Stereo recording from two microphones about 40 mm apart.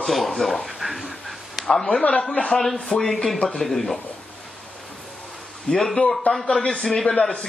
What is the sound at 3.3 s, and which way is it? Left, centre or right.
Speech, left.